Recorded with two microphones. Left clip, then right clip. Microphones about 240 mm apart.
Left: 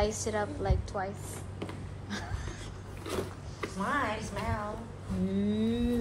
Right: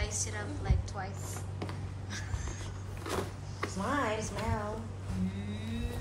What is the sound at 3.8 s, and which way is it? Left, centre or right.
Speech, right.